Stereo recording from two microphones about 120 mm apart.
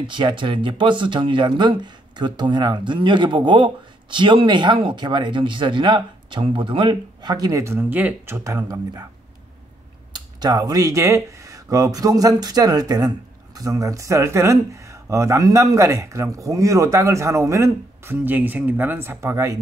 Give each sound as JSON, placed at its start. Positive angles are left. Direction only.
{"t": 0.0, "sound": "speech", "side_deg": -40}
{"t": 10.1, "sound": "speech", "side_deg": -35}